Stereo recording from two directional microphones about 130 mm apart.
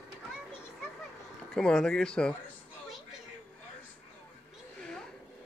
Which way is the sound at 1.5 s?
5° left (ahead or behind).